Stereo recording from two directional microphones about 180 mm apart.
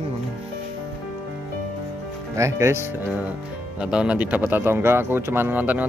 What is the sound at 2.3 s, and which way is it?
Speech, 15° right (ahead or behind).